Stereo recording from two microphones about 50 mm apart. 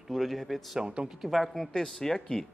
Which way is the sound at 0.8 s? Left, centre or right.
Centre.